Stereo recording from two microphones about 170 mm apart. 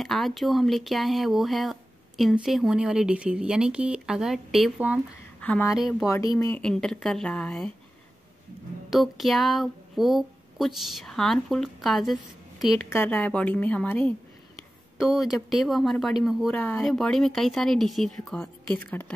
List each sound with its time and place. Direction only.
0.0 s speech: centre (ahead or behind)
5.4 s a woman's voice: 10° left (ahead or behind)
6.0 s a woman's voice: 20° left (ahead or behind)
6.6 s speech: 5° left (ahead or behind)
8.9 s speech: centre (ahead or behind)
12.7 s a woman's voice: 15° left (ahead or behind)
15.0 s speech: centre (ahead or behind)